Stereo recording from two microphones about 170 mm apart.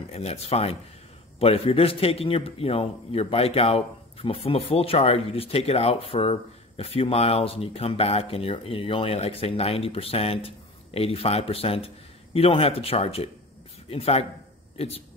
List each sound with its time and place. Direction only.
0.1 s speech: 35° left (ahead or behind)